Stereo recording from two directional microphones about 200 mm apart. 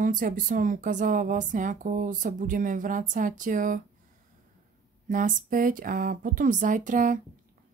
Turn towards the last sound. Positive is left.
turn(degrees=-40)  # may be behind; listen again after turning